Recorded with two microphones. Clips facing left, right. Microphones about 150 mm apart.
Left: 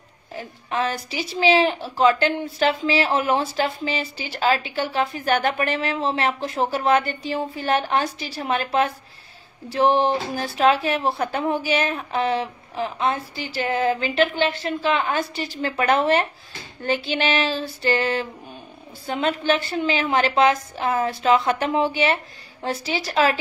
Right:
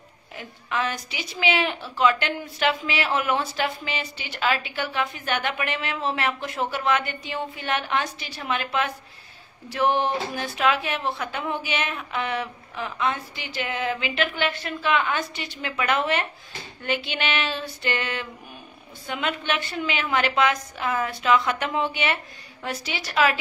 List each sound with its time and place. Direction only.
0.4 s a woman's voice: 35° left (ahead or behind)